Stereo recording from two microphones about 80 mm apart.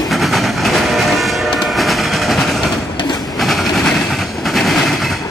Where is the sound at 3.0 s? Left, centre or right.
Left.